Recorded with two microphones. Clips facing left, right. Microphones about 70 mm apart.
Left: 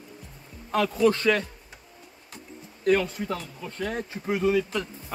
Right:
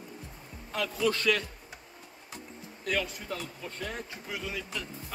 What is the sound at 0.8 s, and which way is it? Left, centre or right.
Speech, left.